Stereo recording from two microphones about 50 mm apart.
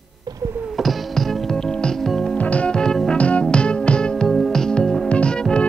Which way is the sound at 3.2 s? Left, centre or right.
Left.